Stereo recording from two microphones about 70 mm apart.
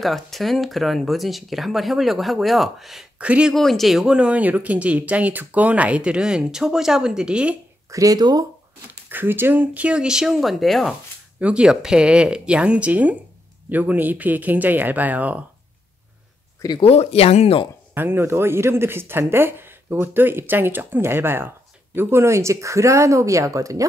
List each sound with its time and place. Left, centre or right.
0.0 s speech: centre
3.2 s speech: centre
3.5 s speech: centre
7.9 s speech: right
8.2 s speech: right
9.1 s speech: right; by 11.0 s centre
11.3 s speech: centre
16.6 s speech: left
17.9 s speech: right